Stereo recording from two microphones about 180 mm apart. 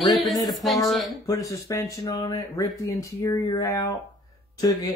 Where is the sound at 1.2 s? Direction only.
20° left (ahead or behind).